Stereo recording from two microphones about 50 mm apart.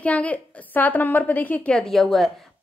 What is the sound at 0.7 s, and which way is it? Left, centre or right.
Speech, left.